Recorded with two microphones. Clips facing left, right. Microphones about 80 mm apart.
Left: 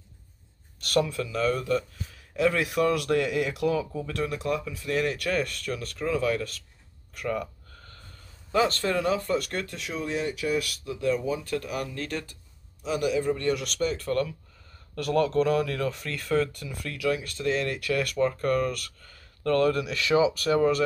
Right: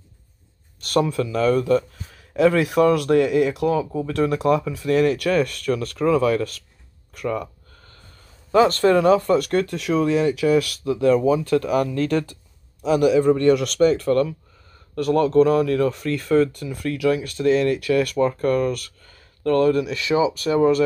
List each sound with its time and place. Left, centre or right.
0.7 s a sound: right
1.0 s speech: right
7.2 s speech: right
8.5 s speech: right
12.8 s speech: right
15.0 s speech: right
16.8 s speech: right
19.4 s speech: right